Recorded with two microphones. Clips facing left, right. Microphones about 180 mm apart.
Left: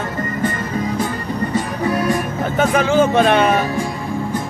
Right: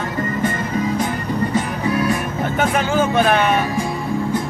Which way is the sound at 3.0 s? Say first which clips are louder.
Left 3 dB; 30° left (ahead or behind).